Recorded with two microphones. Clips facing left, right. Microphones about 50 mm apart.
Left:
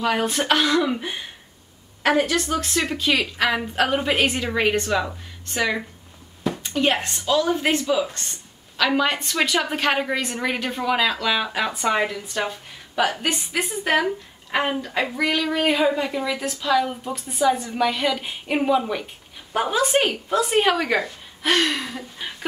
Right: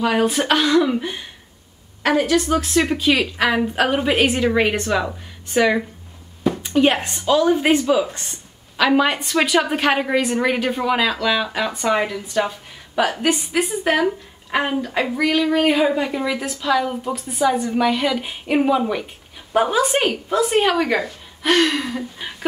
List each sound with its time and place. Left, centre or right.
0.0 s a woman's voice: centre